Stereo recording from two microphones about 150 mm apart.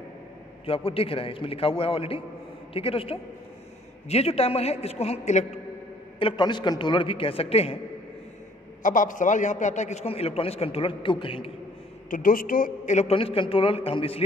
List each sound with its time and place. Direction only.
0.7 s a woman's voice: 40° left (ahead or behind)
6.1 s a woman's voice: 35° left (ahead or behind)
8.8 s a man's voice: 60° left (ahead or behind); by 11.5 s 35° left (ahead or behind)
12.1 s a woman's voice: 70° left (ahead or behind); by 14.2 s 40° left (ahead or behind)